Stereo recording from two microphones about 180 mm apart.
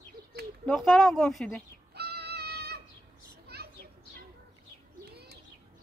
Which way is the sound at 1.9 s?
65° right (ahead or behind).